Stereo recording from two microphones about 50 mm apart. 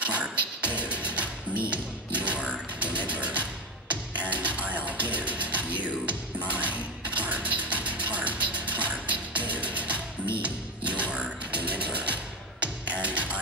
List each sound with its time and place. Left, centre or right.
0.0 s music: right
10.4 s a sound: right
11.9 s music: right